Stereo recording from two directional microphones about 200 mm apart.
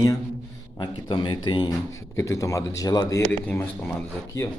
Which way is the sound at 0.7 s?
25° left (ahead or behind).